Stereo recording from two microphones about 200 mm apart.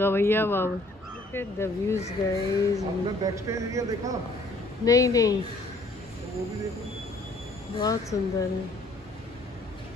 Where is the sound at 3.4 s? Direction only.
15° right (ahead or behind).